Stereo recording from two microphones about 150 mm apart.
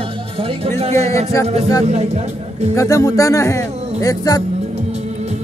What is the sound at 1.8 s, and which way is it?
Speech, 50° right (ahead or behind).